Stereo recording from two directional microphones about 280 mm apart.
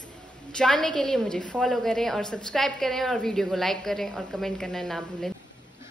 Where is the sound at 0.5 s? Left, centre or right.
Centre.